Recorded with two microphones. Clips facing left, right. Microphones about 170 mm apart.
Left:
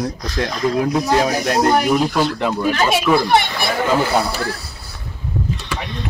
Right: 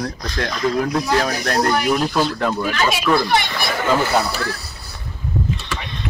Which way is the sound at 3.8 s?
10° left (ahead or behind).